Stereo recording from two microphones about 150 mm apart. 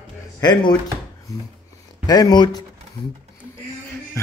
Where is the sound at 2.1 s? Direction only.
25° left (ahead or behind).